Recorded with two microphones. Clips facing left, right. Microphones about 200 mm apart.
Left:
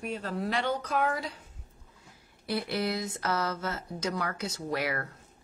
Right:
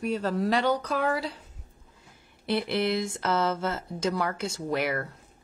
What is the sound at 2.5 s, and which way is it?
Speech, 25° right (ahead or behind).